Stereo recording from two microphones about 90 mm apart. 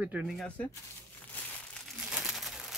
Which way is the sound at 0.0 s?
15° right (ahead or behind).